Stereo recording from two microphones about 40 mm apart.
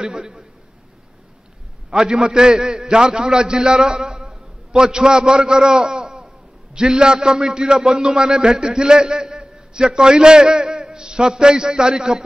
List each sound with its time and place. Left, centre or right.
0.0 s a man's voice: centre
1.9 s a man's voice: centre